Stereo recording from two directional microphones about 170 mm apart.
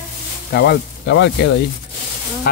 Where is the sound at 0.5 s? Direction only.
80° left.